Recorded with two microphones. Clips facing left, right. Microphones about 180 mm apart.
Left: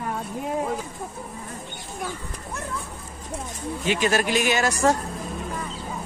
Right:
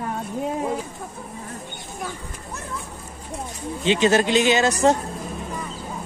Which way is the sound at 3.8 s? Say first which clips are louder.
Right 5 dB; 25° right (ahead or behind).